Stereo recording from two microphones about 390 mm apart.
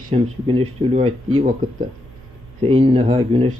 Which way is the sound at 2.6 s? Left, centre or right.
Centre.